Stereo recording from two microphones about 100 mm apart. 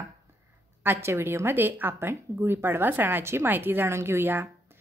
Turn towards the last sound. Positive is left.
turn(degrees=-20)  # may be behind; listen again after turning